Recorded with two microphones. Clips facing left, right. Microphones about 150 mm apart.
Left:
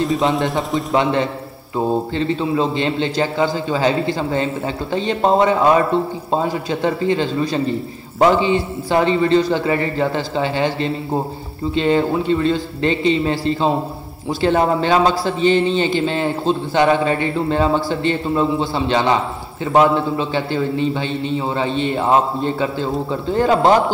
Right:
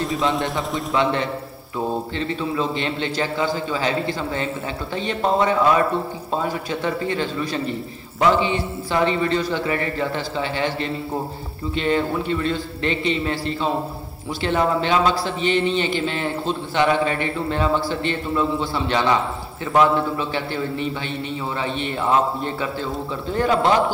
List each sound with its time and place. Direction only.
1.8 s a man's voice: 30° left (ahead or behind)